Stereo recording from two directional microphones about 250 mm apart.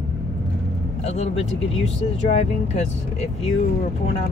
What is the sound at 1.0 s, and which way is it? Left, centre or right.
Speech, left.